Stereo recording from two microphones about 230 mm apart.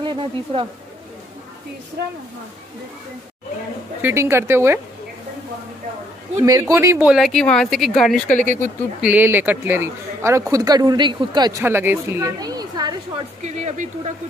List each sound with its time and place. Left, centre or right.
0.0 s speech: right
4.0 s speech: centre
6.4 s speech: centre
8.3 s speech: left
9.0 s speech: centre
13.4 s speech: right